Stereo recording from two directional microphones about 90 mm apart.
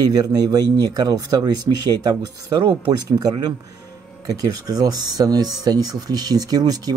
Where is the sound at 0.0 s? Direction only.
45° right (ahead or behind).